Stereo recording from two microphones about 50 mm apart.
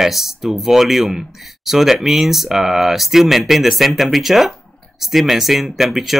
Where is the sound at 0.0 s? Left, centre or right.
Centre.